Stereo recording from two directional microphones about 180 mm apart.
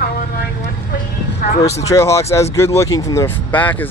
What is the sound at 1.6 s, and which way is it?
Speech, 15° left (ahead or behind).